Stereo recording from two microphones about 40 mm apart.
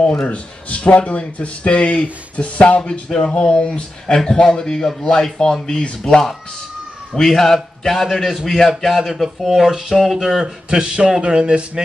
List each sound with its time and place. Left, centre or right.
0.3 s speech: left
2.9 s music: centre
3.6 s speech: left
4.2 s speech: centre
7.2 s a man's voice: centre; by 11.8 s right